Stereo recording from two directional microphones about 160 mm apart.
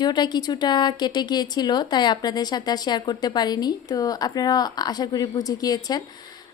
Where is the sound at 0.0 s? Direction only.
25° left (ahead or behind).